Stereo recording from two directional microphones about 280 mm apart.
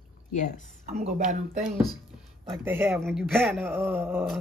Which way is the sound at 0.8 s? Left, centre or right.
Right.